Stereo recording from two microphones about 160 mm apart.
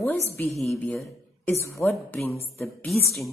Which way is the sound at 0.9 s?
15° left (ahead or behind).